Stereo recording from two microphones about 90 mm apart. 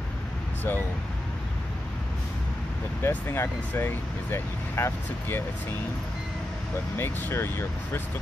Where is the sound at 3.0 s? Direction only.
30° left (ahead or behind).